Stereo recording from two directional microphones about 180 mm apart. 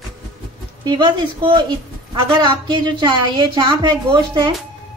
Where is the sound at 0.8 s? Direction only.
25° right (ahead or behind).